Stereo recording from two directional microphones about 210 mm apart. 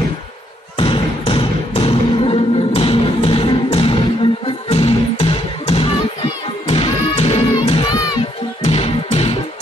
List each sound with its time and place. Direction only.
0.7 s thump: 25° left (ahead or behind)
4.6 s music: 25° left (ahead or behind)